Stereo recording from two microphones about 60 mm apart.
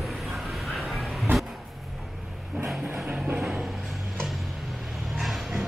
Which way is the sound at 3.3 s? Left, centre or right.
Centre.